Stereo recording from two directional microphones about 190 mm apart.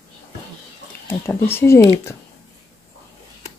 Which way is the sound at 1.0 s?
10° left (ahead or behind).